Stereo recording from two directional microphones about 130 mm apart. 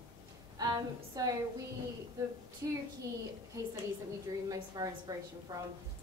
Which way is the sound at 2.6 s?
25° right (ahead or behind).